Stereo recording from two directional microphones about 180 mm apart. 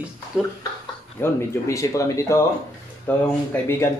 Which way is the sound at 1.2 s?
15° left (ahead or behind).